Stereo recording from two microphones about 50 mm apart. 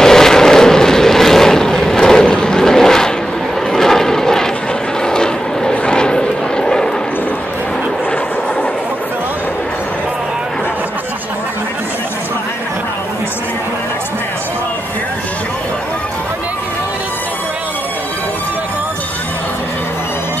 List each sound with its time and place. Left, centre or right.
0.0 s vehicle: centre